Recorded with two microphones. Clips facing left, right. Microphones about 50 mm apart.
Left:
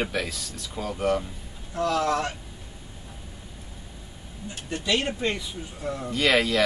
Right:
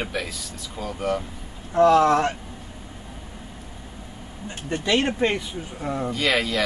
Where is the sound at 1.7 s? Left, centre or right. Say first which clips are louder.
Right 8 dB; right.